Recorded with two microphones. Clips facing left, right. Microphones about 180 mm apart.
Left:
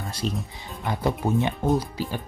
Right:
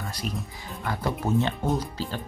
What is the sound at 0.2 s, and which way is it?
Speech, 30° left (ahead or behind).